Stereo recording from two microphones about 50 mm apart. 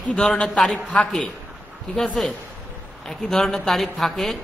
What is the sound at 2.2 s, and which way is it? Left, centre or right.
Speech, centre.